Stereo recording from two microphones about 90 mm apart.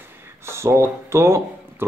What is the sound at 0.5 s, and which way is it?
Speech, 30° right (ahead or behind).